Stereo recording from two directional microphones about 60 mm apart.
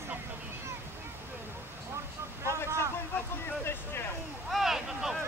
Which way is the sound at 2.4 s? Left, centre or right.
Right.